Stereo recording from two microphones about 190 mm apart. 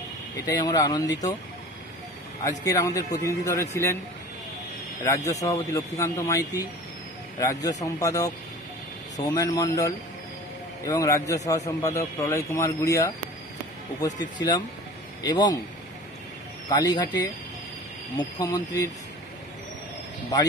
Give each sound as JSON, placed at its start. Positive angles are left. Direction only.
{"t": 0.5, "sound": "speech", "side_deg": 20}
{"t": 2.6, "sound": "a man's voice", "side_deg": 15}
{"t": 5.0, "sound": "a man's voice", "side_deg": 15}
{"t": 15.2, "sound": "speech", "side_deg": 20}
{"t": 16.6, "sound": "speech", "side_deg": 20}
{"t": 18.1, "sound": "speech", "side_deg": 20}